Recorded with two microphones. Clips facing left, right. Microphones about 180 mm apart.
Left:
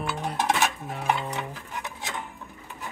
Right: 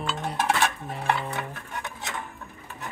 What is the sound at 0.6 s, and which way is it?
Dishes, 5° left (ahead or behind).